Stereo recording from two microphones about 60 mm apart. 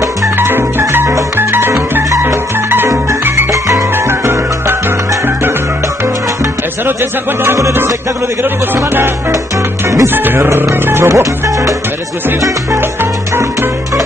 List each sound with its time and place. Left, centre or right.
0.4 s music: right
4.1 s music: right
8.7 s speech: right
13.4 s music: right